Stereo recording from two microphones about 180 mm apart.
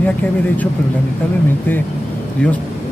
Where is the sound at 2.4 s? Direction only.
5° left (ahead or behind).